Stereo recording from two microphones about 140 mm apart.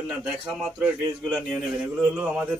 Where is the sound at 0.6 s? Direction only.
5° right (ahead or behind).